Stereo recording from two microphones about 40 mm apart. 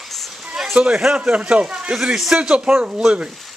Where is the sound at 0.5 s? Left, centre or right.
Centre.